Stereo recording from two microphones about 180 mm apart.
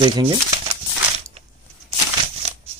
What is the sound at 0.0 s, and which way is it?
Speech, 25° right (ahead or behind).